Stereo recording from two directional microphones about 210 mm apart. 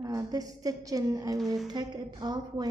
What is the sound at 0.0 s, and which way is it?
A woman's voice, 15° right (ahead or behind).